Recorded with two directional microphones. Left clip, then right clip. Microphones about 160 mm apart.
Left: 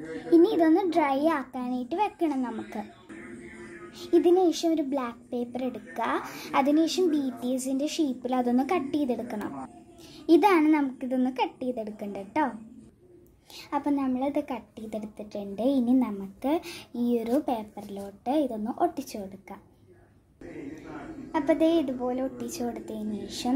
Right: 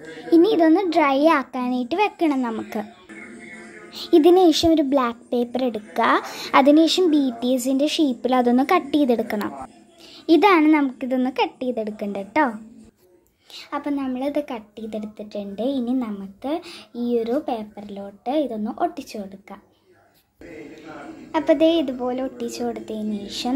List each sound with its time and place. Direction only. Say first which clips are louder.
0.3 s a woman's voice: right 5 dB; 20° right (ahead or behind)
3.9 s a woman's voice: right 7 dB; 25° right (ahead or behind)
13.6 s a woman's voice: right 2 dB; centre (ahead or behind)
21.3 s a child's voice: right 6 dB; 15° right (ahead or behind)